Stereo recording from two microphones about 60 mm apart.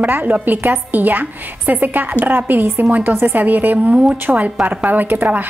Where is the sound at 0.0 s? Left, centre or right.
Right.